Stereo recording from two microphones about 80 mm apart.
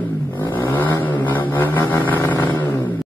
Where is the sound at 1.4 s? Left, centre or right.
Left.